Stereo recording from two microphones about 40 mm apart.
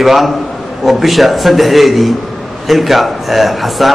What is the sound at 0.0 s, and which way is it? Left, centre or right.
A man's voice, centre.